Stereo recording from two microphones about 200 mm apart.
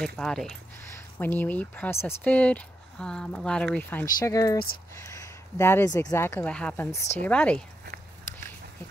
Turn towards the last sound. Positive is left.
turn(degrees=5)  # may be behind; listen again after turning